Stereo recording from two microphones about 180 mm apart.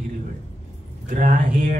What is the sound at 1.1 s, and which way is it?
Speech, 50° right (ahead or behind).